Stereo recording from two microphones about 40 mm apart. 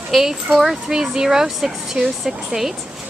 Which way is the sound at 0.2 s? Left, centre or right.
Centre.